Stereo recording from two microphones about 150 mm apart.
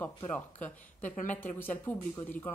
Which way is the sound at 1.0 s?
55° left (ahead or behind).